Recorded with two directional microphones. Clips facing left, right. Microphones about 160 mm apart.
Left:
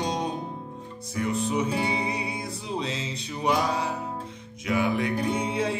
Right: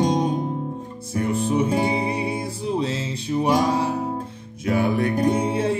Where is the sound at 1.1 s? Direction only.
30° right (ahead or behind).